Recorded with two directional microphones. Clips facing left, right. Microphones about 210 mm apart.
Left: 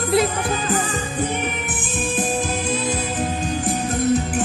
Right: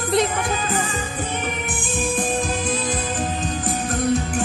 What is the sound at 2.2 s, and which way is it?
Music, 5° left (ahead or behind).